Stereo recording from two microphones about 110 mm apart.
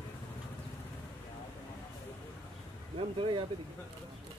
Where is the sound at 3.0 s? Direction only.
50° right (ahead or behind).